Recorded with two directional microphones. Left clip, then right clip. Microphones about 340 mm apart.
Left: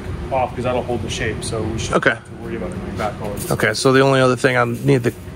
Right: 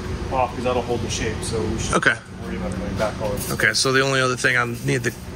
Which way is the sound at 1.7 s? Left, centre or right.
Centre.